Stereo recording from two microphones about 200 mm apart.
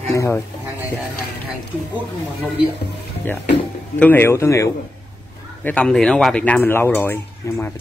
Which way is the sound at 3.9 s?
10° left (ahead or behind).